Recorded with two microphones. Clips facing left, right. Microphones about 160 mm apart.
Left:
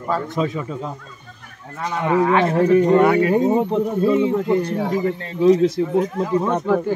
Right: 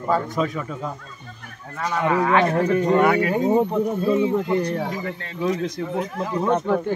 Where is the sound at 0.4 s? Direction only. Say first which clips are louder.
Left 2 dB; 20° left (ahead or behind).